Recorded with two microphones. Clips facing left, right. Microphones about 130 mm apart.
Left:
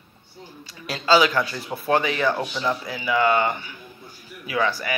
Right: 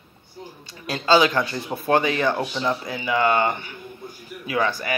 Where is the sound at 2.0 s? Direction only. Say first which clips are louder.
Right 3 dB; 35° right (ahead or behind).